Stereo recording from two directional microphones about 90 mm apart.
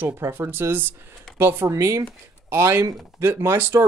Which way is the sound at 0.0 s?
30° right (ahead or behind).